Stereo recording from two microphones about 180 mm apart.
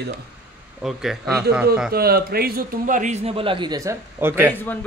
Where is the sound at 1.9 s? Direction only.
60° right (ahead or behind); by 4.6 s 15° right (ahead or behind).